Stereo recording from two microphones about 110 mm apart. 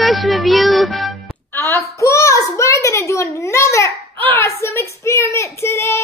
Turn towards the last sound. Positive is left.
turn(degrees=25)  # may be behind; listen again after turning